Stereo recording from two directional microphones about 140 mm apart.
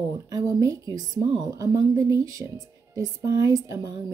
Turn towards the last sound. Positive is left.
turn(degrees=-25)  # may be behind; listen again after turning